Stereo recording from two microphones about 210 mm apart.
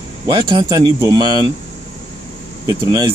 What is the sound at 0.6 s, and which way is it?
Speech, 20° right (ahead or behind).